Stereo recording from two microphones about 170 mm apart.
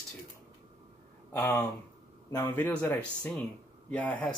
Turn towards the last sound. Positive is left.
turn(degrees=10)  # may be behind; listen again after turning